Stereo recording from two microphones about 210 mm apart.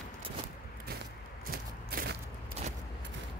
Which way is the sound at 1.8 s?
50° right (ahead or behind).